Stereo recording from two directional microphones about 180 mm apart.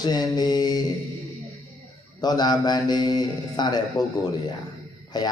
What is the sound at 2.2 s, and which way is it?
A man's voice, 20° left (ahead or behind).